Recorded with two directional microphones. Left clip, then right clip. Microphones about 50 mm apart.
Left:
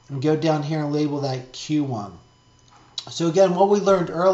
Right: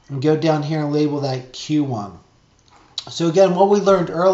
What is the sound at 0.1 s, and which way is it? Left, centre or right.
Speech, right.